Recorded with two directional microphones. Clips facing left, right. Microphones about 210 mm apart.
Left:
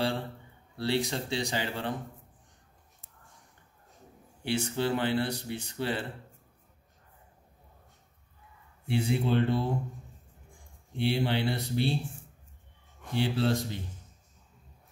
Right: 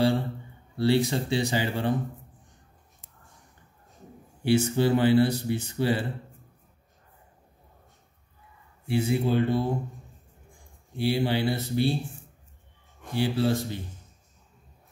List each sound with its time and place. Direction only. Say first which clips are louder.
0.7 s speech: right 6 dB; 5° right (ahead or behind)
4.5 s speech: right 7 dB; 5° right (ahead or behind)
8.8 s speech: right 3 dB; 5° right (ahead or behind)
11.0 s speech: right 3 dB; 5° right (ahead or behind)
13.1 s speech: right 3 dB; 5° right (ahead or behind)